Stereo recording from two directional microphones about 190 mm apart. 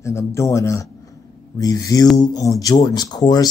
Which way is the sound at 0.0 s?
15° left (ahead or behind).